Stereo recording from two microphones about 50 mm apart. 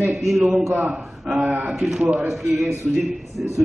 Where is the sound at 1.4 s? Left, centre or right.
Right.